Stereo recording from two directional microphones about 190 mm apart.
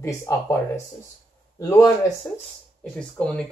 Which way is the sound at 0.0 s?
15° left (ahead or behind).